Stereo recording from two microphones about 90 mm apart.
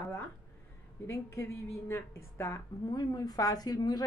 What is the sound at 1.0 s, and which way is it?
A woman's voice, 35° left (ahead or behind).